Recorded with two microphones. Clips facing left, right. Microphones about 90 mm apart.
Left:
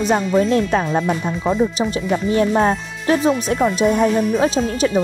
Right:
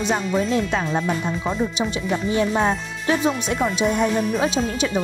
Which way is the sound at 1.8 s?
40° left (ahead or behind).